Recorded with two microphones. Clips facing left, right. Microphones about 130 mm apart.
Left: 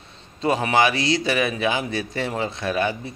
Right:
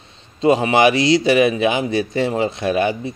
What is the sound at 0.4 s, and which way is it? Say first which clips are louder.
Speech: right 5 dB; 20° right (ahead or behind).